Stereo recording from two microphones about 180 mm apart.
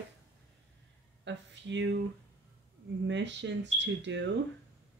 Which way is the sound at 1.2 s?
85° right.